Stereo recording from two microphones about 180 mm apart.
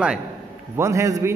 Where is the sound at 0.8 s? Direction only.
15° right (ahead or behind).